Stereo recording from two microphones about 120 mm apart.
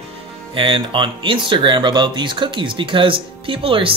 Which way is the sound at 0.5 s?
45° right (ahead or behind).